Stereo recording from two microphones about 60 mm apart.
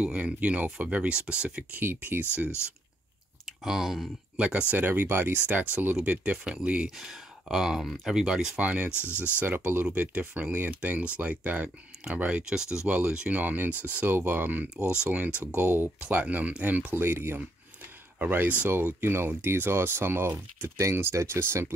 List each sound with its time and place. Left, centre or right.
0.0 s speech: right
3.4 s speech: centre
4.4 s speech: centre
4.7 s speech: right
5.5 s speech: right
7.0 s speech: centre
8.1 s speech: centre
8.5 s speech: right
8.9 s speech: left
9.9 s speech: right
13.4 s speech: right
16.9 s speech: right